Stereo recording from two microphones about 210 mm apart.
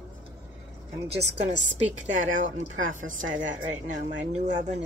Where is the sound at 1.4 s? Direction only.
35° right (ahead or behind).